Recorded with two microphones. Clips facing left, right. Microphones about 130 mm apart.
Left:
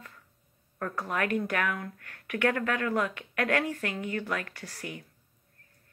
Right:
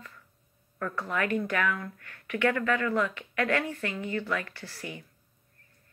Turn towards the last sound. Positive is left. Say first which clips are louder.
# even
turn(degrees=55)  # may be behind; listen again after turning